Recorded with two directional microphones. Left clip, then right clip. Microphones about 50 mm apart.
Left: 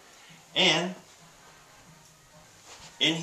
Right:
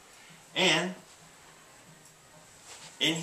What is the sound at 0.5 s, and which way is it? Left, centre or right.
Speech, left.